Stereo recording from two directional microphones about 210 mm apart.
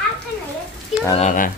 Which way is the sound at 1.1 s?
35° left (ahead or behind).